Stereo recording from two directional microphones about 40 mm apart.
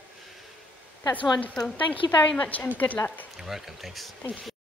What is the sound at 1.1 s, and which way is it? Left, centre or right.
A woman's voice, left.